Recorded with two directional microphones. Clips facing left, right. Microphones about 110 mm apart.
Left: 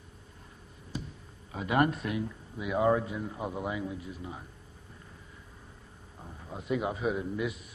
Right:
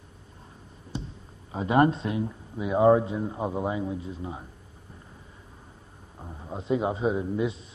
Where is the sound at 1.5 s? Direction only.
30° right (ahead or behind).